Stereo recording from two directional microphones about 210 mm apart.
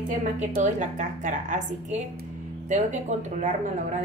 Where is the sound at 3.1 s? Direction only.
35° right (ahead or behind).